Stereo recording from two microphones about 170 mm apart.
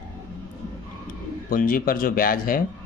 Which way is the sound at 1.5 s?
55° left (ahead or behind).